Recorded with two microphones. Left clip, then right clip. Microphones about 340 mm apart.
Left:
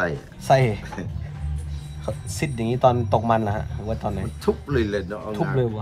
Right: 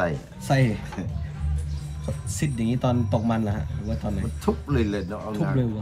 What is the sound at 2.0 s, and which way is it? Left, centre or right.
Speech, centre.